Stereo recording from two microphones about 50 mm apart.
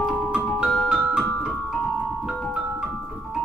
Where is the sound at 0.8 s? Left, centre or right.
Centre.